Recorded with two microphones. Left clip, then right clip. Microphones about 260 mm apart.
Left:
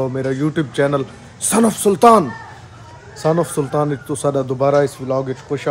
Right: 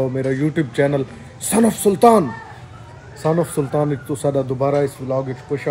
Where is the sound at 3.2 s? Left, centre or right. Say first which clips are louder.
Left 2 dB; left.